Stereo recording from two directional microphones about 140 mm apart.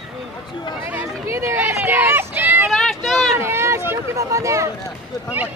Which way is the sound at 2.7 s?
Centre (ahead or behind).